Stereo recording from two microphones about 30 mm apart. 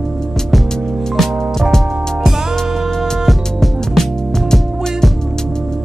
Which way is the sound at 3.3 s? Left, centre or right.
Centre.